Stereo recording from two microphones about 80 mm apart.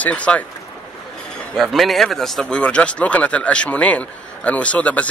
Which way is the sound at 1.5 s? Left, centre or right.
Centre.